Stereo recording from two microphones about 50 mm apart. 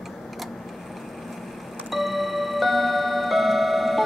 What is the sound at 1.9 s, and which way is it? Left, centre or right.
Music, centre.